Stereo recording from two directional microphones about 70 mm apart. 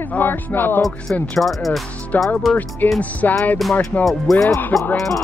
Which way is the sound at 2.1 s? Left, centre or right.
Left.